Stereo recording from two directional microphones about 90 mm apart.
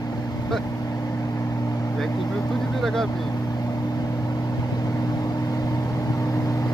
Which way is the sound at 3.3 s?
40° left (ahead or behind).